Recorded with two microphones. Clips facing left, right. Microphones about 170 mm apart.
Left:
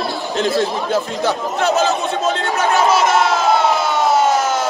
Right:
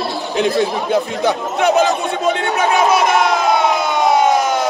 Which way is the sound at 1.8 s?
15° right (ahead or behind).